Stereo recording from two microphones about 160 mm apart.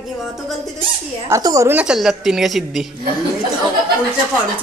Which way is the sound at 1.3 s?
20° right (ahead or behind).